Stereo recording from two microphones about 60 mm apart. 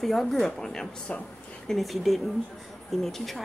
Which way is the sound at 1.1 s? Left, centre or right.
Centre.